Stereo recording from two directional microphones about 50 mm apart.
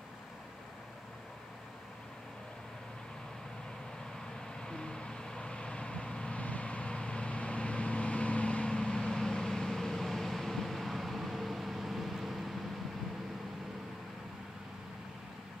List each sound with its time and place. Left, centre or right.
4.6 s vehicle: centre